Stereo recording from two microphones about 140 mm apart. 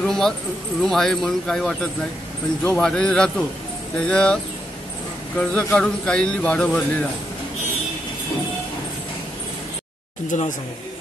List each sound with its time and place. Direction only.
0.0 s a sound: 5° left (ahead or behind)
0.8 s speech: 5° left (ahead or behind)
5.4 s speech: 10° left (ahead or behind)
10.3 s speech: 60° left (ahead or behind)